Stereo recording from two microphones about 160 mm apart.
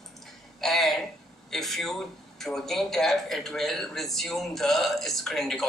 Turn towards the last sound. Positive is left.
turn(degrees=0)  # may be behind; listen again after turning